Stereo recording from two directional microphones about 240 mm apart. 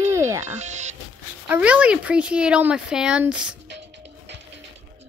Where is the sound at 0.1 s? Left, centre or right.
Centre.